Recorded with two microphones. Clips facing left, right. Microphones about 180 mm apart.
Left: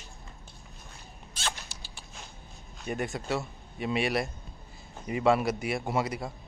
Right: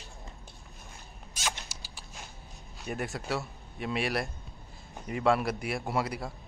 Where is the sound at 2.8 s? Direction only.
Centre (ahead or behind).